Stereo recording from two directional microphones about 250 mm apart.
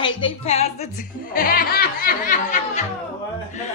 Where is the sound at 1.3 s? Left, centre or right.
Left.